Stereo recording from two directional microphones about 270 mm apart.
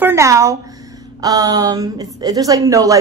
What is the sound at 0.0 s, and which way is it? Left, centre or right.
A woman's voice, centre.